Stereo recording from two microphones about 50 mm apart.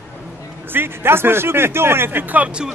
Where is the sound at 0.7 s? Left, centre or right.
Right.